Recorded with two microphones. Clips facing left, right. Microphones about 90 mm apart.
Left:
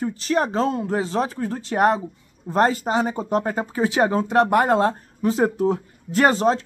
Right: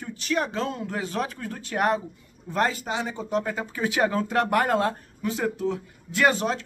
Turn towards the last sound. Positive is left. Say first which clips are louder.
# left 5 dB
turn(degrees=35)  # may be behind; listen again after turning